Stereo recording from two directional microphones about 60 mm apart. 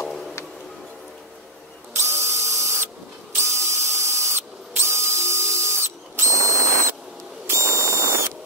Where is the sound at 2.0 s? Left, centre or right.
Right.